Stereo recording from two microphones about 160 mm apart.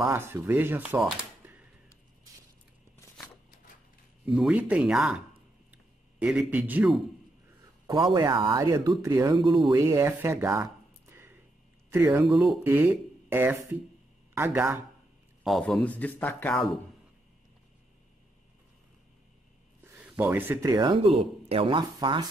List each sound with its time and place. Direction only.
0.0 s speech: 15° right (ahead or behind)
4.3 s speech: 5° right (ahead or behind)
5.7 s a sound: 5° right (ahead or behind)
7.8 s speech: 30° right (ahead or behind)
12.3 s speech: centre (ahead or behind)
12.6 s speech: 15° right (ahead or behind)
15.4 s a man's voice: centre (ahead or behind)
19.8 s speech: 10° right (ahead or behind); by 22.3 s 30° right (ahead or behind)